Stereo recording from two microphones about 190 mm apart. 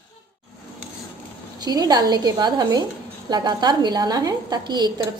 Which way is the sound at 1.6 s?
20° right (ahead or behind).